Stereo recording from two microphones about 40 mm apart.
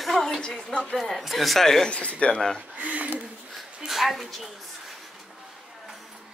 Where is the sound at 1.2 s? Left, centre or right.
Centre.